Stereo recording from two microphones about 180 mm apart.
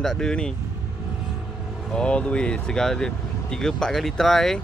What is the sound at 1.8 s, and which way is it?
Speech, 5° left (ahead or behind).